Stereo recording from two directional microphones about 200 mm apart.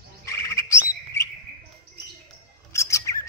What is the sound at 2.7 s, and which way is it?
Bird, 15° left (ahead or behind).